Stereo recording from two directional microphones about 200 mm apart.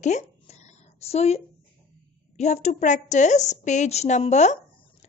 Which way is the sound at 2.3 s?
35° left (ahead or behind).